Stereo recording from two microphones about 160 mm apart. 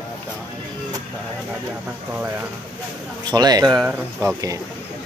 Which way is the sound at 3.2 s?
25° right (ahead or behind).